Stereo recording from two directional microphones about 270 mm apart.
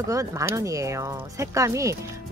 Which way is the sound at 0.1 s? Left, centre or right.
Centre.